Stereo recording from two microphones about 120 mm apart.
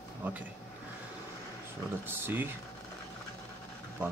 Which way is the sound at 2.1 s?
15° right (ahead or behind).